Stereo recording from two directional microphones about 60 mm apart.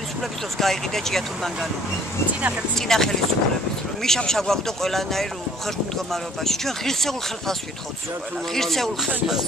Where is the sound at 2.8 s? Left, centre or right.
Centre.